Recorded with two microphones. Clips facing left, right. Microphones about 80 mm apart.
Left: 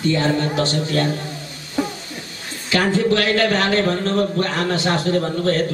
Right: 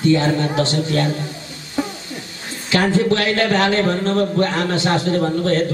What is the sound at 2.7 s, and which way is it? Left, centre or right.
Speech, right.